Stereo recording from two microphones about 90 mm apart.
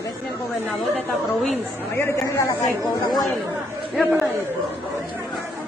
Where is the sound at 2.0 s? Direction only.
25° left (ahead or behind).